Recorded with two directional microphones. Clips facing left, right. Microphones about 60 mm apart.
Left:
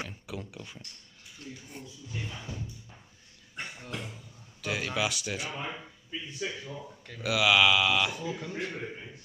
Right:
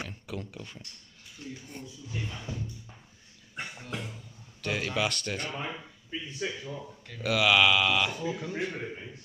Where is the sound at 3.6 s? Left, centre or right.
Centre.